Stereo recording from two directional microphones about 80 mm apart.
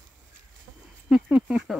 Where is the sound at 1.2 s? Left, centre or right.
Centre.